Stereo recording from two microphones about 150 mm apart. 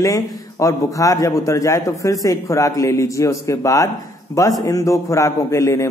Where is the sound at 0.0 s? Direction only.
20° left (ahead or behind).